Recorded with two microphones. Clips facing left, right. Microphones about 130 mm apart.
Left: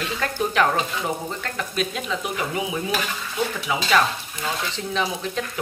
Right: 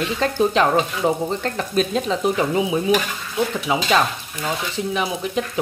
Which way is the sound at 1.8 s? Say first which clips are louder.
Right 7 dB; 35° right (ahead or behind).